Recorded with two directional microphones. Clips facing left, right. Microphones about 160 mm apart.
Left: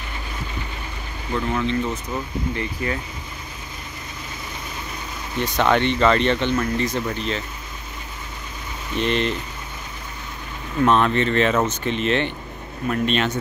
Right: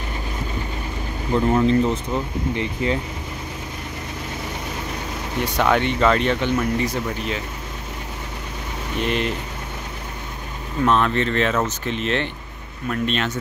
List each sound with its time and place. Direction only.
1.3 s speech: 35° right (ahead or behind)
2.1 s speech: 20° right (ahead or behind)
5.4 s speech: 5° right (ahead or behind)
8.9 s speech: 5° right (ahead or behind)
10.9 s speech: centre (ahead or behind)